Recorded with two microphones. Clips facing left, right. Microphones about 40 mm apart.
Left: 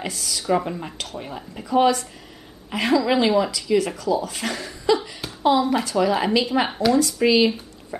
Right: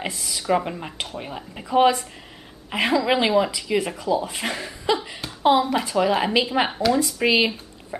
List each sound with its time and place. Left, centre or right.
0.0 s a woman's voice: right
6.7 s speech: centre
7.0 s speech: centre
7.9 s dog: centre